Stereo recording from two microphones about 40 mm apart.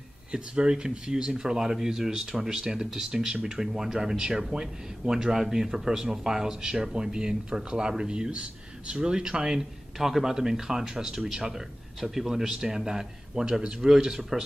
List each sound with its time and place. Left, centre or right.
0.3 s speech: right
9.9 s speech: centre